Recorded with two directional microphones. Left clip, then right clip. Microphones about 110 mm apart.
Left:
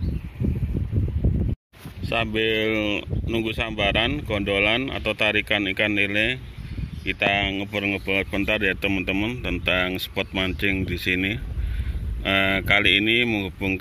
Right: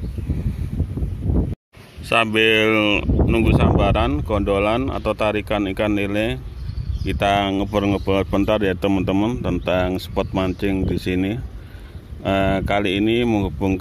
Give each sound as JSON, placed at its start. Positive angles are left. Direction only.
{"t": 2.0, "sound": "speech", "side_deg": 0}
{"t": 7.3, "sound": "speech", "side_deg": -45}